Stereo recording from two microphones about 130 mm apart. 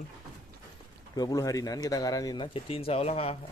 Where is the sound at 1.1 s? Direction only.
30° left (ahead or behind).